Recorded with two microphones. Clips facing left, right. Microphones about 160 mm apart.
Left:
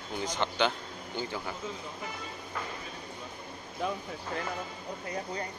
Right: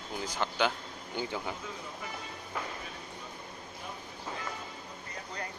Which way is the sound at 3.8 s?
90° left.